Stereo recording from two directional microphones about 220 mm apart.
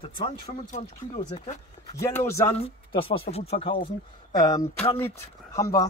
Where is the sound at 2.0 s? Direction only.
10° left (ahead or behind).